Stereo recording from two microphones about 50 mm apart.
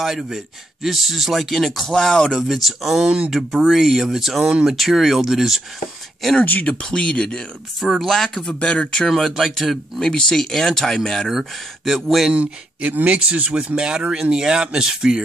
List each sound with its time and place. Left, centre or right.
0.0 s speech: centre
2.4 s speech: centre
6.6 s speech: centre
9.1 s speech: centre
9.9 s speech: centre
12.3 s speech: right